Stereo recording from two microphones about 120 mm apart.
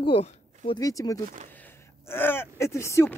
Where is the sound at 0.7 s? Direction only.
30° left (ahead or behind).